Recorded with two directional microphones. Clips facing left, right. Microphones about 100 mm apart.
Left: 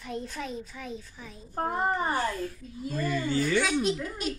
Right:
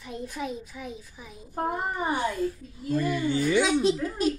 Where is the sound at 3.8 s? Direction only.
30° right (ahead or behind).